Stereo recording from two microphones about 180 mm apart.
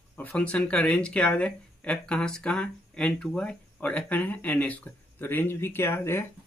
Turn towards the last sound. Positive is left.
turn(degrees=10)  # may be behind; listen again after turning